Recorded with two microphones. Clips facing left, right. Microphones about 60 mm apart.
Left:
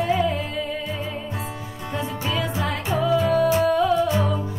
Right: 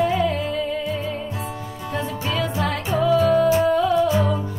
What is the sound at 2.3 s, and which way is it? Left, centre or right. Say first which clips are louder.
Music: right 2 dB; centre.